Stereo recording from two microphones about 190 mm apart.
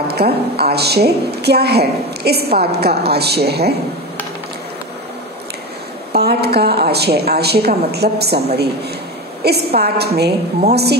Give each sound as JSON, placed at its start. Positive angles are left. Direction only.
{"t": 0.1, "sound": "a woman's voice", "side_deg": -55}
{"t": 6.1, "sound": "a woman's voice", "side_deg": -55}
{"t": 9.4, "sound": "a woman's voice", "side_deg": -55}